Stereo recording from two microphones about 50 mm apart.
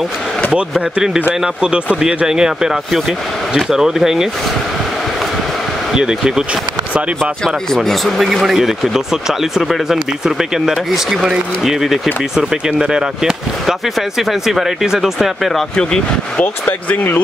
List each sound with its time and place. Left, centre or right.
0.6 s speech: right
5.9 s speech: centre
7.2 s speech: centre
12.4 s speech: centre
15.7 s speech: centre
16.3 s speech: left